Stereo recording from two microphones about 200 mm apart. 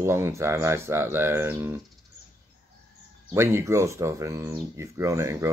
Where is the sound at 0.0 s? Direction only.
15° right (ahead or behind).